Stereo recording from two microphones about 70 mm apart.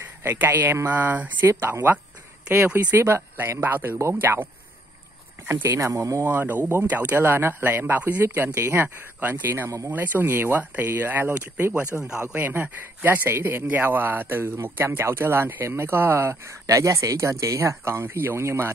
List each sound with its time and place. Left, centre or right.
0.2 s speech: right
1.4 s a man's voice: right
5.6 s speech: right
6.3 s a man's voice: right
16.6 s speech: right